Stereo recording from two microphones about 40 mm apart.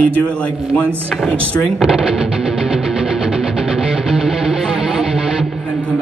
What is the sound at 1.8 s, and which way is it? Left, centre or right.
Speech, centre.